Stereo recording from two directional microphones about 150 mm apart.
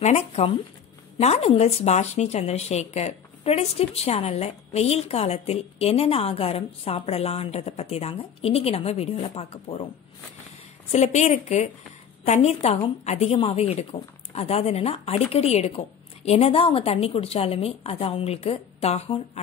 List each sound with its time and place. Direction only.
0.0 s speech: 45° left (ahead or behind)
10.9 s a woman's voice: 50° left (ahead or behind)